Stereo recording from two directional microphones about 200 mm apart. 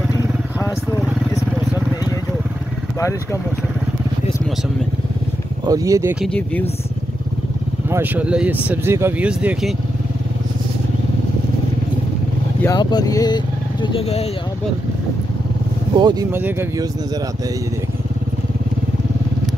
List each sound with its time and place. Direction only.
5.7 s speech: 15° right (ahead or behind)
6.2 s speech: 5° left (ahead or behind)
7.9 s speech: 10° right (ahead or behind)
12.6 s speech: 20° left (ahead or behind)
16.0 s speech: 20° right (ahead or behind)
16.3 s speech: 10° right (ahead or behind)